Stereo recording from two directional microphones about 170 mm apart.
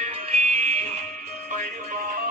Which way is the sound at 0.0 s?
40° right (ahead or behind).